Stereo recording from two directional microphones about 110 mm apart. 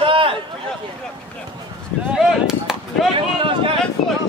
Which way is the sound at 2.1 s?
5° right (ahead or behind).